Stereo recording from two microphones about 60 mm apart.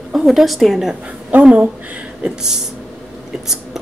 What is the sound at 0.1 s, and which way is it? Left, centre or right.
Speech, centre.